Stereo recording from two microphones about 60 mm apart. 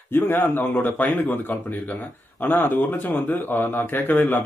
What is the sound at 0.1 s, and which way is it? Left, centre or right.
A man's voice, left.